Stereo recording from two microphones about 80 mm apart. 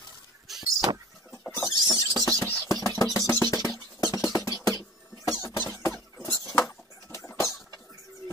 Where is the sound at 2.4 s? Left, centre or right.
Left.